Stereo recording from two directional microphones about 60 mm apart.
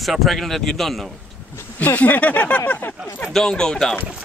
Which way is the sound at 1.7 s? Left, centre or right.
Left.